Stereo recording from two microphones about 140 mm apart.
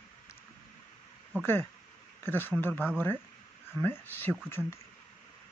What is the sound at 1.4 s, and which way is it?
Speech, 15° left (ahead or behind).